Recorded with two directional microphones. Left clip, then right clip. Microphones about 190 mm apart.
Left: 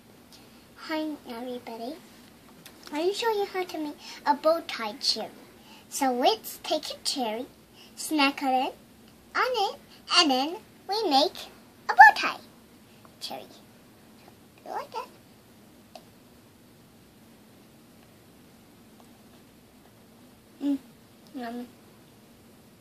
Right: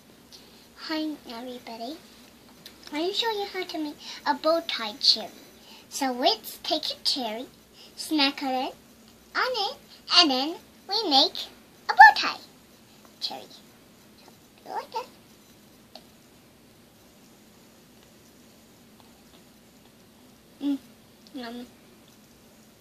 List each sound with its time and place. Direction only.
0.7 s a child's voice: 20° left (ahead or behind)
14.7 s a child's voice: 20° left (ahead or behind)